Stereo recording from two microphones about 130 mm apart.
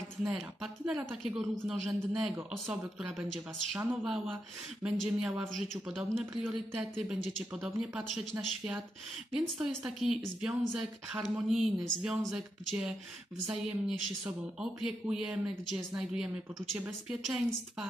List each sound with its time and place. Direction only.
0.6 s speech: 10° right (ahead or behind)
5.0 s speech: 15° right (ahead or behind)
5.5 s speech: centre (ahead or behind)